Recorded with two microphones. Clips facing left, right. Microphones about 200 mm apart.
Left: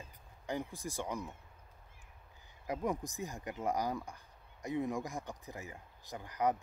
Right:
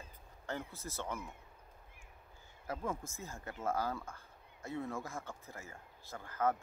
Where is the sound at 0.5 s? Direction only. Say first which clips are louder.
Left 4 dB; 15° left (ahead or behind).